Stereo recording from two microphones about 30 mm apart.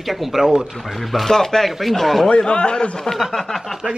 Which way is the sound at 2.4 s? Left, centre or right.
Left.